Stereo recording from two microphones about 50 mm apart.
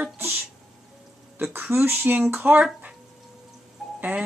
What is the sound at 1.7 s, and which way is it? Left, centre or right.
Speech, right.